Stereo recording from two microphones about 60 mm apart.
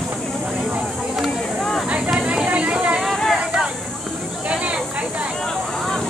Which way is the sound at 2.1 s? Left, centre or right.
Centre.